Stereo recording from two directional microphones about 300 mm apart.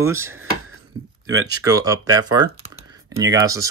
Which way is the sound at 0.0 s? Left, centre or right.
Centre.